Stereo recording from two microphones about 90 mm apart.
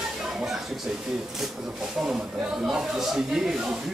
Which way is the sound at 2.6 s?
5° right (ahead or behind).